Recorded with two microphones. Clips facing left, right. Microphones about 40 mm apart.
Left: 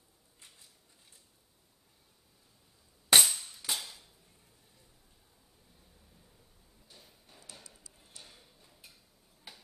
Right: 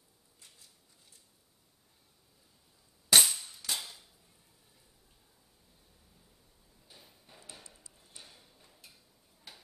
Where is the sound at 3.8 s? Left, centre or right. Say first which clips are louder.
Even; centre.